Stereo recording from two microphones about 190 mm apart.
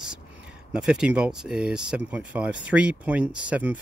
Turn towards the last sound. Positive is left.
turn(degrees=-5)  # may be behind; listen again after turning